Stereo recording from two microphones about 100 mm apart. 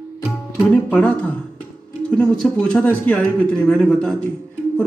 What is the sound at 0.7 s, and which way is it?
A man's voice, 10° left (ahead or behind).